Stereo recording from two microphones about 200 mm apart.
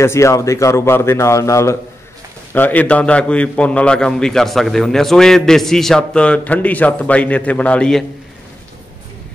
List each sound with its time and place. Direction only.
0.0 s a man's voice: 15° left (ahead or behind)